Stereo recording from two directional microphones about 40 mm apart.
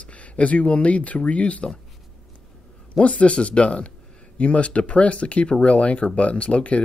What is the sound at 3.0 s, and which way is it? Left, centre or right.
Speech, left.